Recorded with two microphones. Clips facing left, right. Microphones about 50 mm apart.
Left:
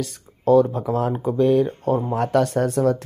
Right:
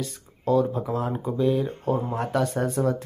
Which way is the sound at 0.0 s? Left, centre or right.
Left.